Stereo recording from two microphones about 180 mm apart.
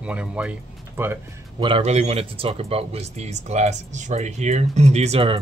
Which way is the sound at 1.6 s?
30° right (ahead or behind).